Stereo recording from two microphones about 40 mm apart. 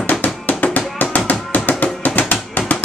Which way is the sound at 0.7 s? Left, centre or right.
Left.